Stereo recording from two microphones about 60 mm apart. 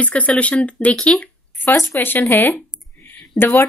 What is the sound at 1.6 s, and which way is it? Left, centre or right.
Speech, left.